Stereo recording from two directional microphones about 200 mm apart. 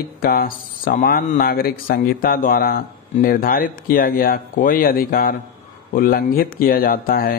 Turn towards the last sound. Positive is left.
turn(degrees=45)  # may be behind; listen again after turning